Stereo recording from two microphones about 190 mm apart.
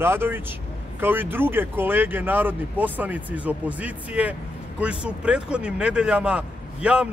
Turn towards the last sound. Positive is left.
turn(degrees=-5)  # may be behind; listen again after turning